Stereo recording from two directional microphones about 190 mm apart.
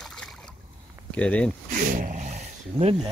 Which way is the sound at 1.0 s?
5° left (ahead or behind).